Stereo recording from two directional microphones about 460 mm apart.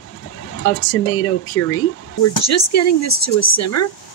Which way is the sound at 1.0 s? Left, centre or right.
Left.